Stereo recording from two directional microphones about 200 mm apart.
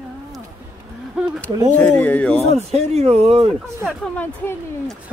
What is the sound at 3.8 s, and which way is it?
Speech, 5° left (ahead or behind).